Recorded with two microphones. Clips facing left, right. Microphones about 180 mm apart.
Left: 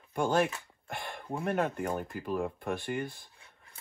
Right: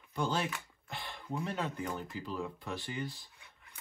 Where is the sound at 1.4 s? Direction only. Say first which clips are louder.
Left 8 dB; 55° left (ahead or behind).